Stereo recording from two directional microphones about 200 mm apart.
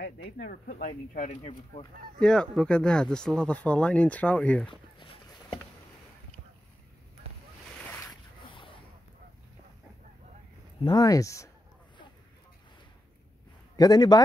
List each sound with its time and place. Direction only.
0.0 s speech: 50° left (ahead or behind)
2.1 s speech: 5° left (ahead or behind)
4.6 s a sound: 25° left (ahead or behind)
8.1 s a sound: 25° left (ahead or behind)
10.8 s speech: 20° left (ahead or behind)
13.7 s a man's voice: 20° left (ahead or behind)